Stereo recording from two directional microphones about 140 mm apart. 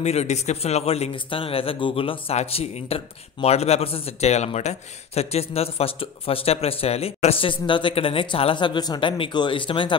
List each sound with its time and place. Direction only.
0.0 s a man's voice: 50° left (ahead or behind); by 9.9 s 35° left (ahead or behind)